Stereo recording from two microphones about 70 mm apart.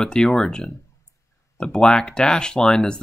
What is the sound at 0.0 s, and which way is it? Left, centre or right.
Speech, centre.